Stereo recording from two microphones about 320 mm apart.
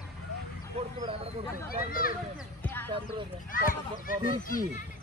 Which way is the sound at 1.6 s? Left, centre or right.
Left.